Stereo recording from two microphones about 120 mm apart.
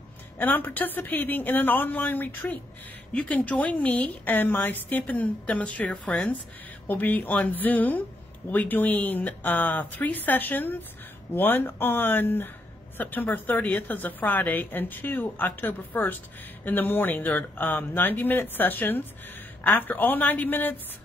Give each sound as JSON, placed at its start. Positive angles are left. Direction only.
{"t": 0.4, "sound": "a woman's voice", "side_deg": 15}